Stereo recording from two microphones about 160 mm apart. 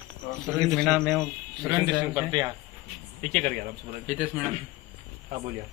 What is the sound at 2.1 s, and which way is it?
Speech, 20° right (ahead or behind).